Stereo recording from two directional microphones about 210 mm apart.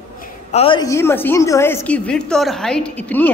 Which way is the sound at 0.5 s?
25° left (ahead or behind).